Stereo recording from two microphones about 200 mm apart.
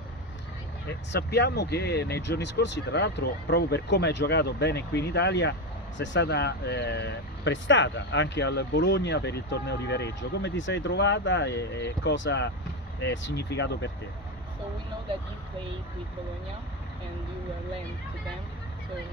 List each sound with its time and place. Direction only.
1.1 s speech: 55° left (ahead or behind)